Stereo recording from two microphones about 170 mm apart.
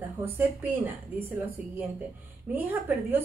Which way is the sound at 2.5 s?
10° right (ahead or behind).